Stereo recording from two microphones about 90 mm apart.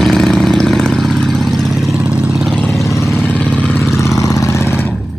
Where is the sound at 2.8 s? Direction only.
35° left (ahead or behind).